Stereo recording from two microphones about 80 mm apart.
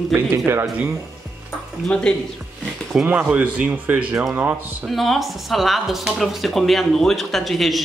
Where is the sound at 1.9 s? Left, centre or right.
Centre.